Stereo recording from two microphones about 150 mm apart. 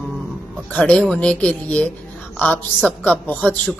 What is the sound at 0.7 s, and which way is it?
A woman's voice, 10° left (ahead or behind).